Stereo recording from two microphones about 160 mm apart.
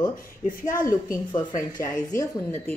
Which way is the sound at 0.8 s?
25° left (ahead or behind).